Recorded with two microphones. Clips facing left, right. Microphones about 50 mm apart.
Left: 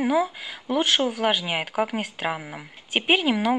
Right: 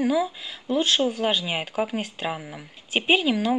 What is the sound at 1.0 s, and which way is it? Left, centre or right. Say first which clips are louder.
Speech: even; centre.